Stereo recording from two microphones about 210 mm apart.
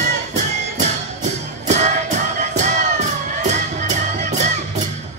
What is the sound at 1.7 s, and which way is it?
Music, 35° right (ahead or behind).